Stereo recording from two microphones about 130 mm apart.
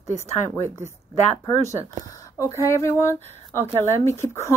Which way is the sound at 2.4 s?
25° left (ahead or behind).